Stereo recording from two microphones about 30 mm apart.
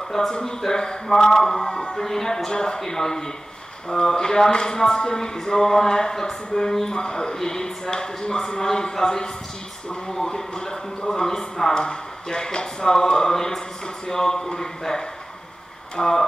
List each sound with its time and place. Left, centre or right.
0.3 s speech: left
11.7 s speech: left